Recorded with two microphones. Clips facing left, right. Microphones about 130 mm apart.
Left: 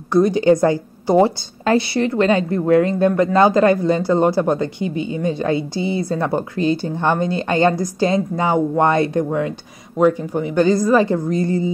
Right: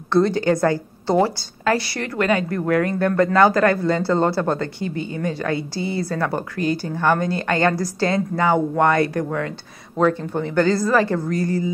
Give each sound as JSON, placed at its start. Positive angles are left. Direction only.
{"t": 0.1, "sound": "speech", "side_deg": 15}